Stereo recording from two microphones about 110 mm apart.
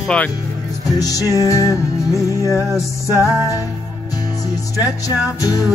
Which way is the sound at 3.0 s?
25° right (ahead or behind).